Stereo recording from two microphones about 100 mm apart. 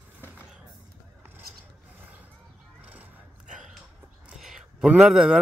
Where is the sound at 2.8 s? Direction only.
15° right (ahead or behind).